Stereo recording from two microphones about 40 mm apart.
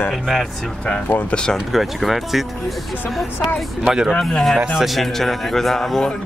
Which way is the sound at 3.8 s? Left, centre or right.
Centre.